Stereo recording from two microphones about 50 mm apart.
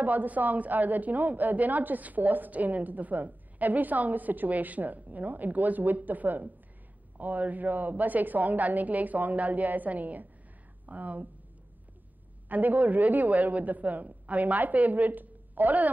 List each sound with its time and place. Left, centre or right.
0.0 s a woman's voice: right
12.4 s a woman's voice: right